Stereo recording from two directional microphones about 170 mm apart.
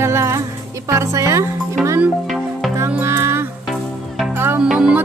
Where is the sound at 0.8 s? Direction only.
20° right (ahead or behind).